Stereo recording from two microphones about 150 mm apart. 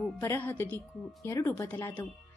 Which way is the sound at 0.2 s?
15° left (ahead or behind).